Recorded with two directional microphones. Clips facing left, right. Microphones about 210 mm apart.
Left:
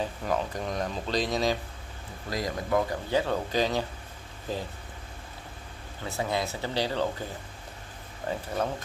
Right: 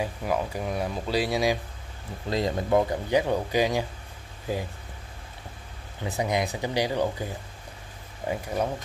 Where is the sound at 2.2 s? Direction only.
25° right (ahead or behind).